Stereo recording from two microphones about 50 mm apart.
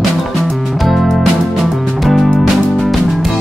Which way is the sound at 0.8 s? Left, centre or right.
Centre.